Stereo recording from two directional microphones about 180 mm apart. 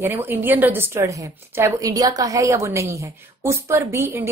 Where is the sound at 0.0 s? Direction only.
10° right (ahead or behind).